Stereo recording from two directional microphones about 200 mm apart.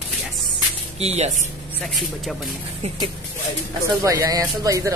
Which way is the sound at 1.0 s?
35° right (ahead or behind).